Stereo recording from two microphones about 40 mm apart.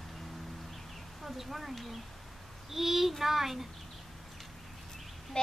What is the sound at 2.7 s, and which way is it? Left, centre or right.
Child singing, centre.